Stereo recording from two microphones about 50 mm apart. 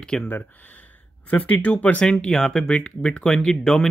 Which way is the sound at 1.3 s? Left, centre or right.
Left.